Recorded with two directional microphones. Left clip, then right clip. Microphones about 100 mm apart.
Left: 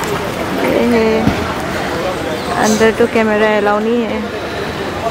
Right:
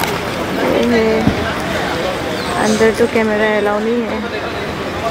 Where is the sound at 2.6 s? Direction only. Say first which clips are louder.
Left 1 dB; 25° left (ahead or behind).